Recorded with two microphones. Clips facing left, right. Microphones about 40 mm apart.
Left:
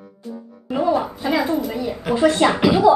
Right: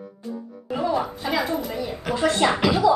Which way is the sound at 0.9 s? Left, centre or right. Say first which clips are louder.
Left 4 dB; centre.